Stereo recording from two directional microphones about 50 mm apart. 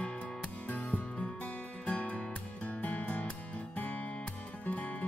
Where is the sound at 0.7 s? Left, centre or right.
Left.